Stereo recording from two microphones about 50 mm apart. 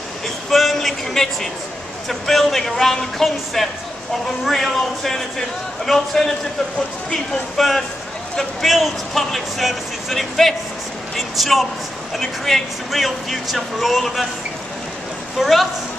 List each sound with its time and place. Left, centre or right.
0.5 s a sound: centre
2.0 s a man's voice: centre
7.5 s speech: centre
15.3 s speech: centre